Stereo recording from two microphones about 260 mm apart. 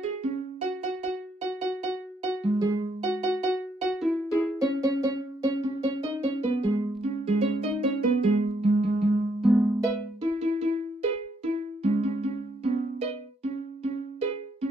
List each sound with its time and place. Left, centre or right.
0.0 s music: right
3.5 s music: centre
4.7 s music: centre
5.8 s music: right
9.4 s harp: centre
10.2 s music: right